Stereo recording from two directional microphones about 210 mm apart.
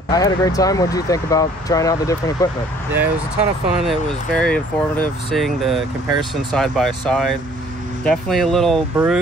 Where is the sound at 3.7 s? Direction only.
Centre (ahead or behind).